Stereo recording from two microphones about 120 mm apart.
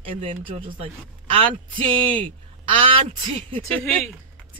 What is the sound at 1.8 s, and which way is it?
Speech, 45° right (ahead or behind).